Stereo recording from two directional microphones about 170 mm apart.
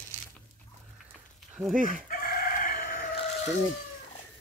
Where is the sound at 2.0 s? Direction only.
55° left (ahead or behind).